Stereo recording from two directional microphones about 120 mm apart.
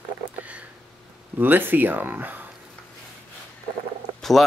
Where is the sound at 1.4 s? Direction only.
15° right (ahead or behind).